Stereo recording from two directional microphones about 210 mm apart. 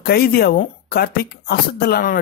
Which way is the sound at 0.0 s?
50° left (ahead or behind).